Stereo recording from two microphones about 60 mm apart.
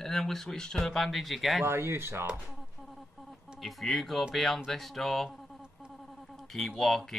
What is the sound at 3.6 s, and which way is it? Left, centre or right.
Speech, centre.